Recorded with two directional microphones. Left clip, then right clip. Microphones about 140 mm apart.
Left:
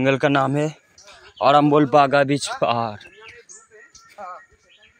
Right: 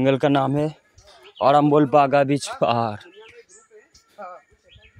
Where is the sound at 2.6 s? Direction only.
45° right (ahead or behind).